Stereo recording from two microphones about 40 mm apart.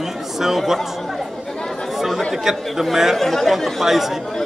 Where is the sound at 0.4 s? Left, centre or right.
Centre.